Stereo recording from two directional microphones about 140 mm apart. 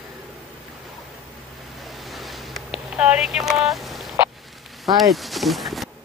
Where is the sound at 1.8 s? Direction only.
Centre (ahead or behind).